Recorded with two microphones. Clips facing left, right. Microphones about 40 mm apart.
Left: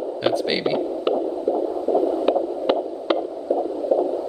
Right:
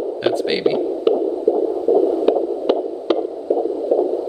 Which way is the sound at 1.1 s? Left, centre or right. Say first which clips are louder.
Right 6 dB; centre.